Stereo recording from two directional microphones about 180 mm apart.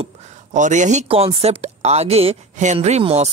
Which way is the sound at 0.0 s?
40° right (ahead or behind).